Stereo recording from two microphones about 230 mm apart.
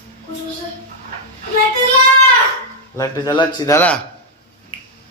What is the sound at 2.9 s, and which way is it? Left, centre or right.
Speech, centre.